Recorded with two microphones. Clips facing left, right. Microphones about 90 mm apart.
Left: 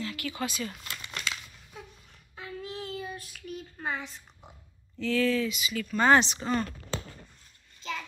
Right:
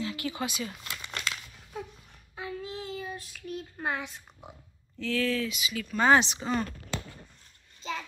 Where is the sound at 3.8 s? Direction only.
10° right (ahead or behind).